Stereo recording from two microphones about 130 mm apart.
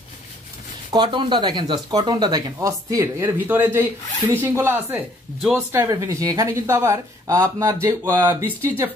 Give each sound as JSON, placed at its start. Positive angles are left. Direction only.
{"t": 0.9, "sound": "a woman's voice", "side_deg": -40}